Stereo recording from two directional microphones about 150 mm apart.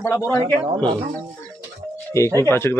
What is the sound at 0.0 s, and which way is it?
Speech, 15° left (ahead or behind).